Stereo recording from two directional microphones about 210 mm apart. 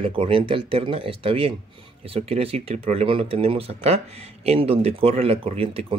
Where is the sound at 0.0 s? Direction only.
25° right (ahead or behind).